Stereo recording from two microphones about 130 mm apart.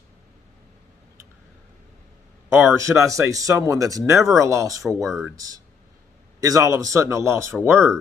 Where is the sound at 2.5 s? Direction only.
20° right (ahead or behind).